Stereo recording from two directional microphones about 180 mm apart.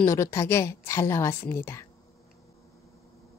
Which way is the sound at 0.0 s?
15° left (ahead or behind).